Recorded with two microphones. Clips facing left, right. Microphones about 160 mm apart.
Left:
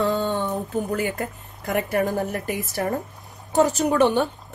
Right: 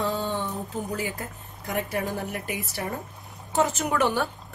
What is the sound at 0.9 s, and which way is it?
A woman's voice, 60° left (ahead or behind).